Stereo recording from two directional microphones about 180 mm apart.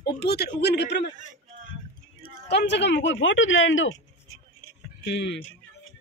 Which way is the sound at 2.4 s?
70° left (ahead or behind).